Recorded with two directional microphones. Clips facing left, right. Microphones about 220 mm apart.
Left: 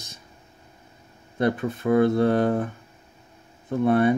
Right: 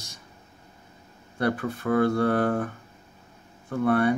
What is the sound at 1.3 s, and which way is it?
Speech, 20° left (ahead or behind).